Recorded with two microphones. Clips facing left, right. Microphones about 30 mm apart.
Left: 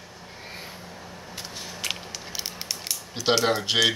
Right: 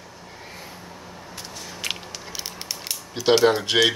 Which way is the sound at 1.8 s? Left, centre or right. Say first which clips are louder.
Right 2 dB; centre.